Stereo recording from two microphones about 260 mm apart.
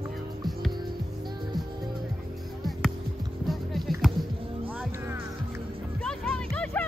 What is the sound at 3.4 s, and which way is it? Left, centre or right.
Music, centre.